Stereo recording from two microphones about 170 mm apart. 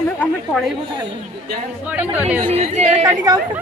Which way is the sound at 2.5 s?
40° right (ahead or behind).